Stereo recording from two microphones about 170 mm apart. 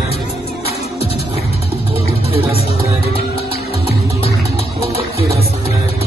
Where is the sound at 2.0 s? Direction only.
35° left (ahead or behind).